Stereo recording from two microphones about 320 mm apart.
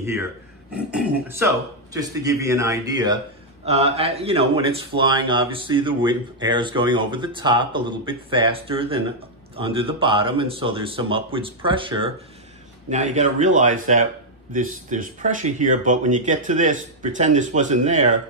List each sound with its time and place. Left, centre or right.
0.0 s speech: centre